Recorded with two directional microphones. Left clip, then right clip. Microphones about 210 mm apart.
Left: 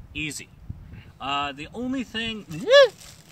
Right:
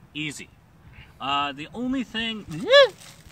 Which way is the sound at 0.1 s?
5° right (ahead or behind).